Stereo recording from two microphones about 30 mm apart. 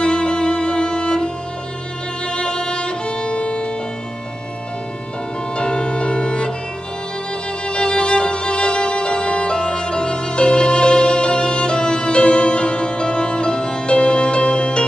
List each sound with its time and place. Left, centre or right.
0.0 s music: left
2.2 s violin: left
5.6 s music: left
7.6 s music: left